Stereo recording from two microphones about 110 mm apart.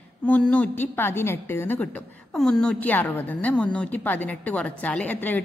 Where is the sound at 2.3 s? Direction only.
5° left (ahead or behind).